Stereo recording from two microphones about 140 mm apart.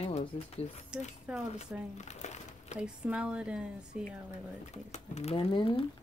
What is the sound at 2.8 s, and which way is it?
Speech, 5° right (ahead or behind).